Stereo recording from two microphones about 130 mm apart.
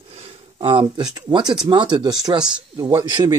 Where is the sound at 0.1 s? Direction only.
45° right (ahead or behind).